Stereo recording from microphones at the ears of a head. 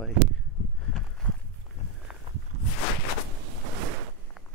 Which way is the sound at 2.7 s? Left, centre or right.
Left.